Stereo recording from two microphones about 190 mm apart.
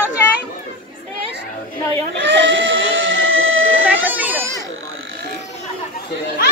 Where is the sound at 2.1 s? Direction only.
75° right (ahead or behind); by 3.8 s 90° right.